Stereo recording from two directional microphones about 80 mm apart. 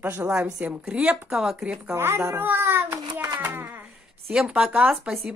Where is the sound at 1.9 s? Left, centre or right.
Right.